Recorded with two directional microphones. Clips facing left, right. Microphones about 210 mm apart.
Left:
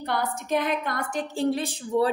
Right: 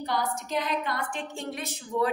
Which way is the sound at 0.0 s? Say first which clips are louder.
Left 1 dB; 60° left (ahead or behind).